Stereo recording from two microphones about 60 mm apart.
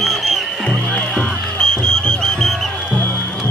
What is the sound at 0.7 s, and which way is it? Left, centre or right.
Music, left.